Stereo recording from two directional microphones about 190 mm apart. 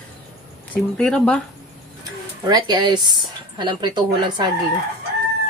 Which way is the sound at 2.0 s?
20° right (ahead or behind).